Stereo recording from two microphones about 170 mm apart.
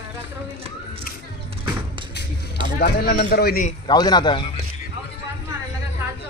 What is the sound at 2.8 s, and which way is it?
Speech, 65° left (ahead or behind).